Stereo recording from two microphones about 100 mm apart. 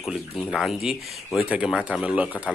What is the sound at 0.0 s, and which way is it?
Speech, 5° right (ahead or behind).